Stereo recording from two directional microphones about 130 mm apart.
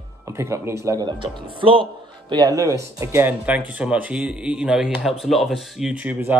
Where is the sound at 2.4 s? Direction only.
25° right (ahead or behind).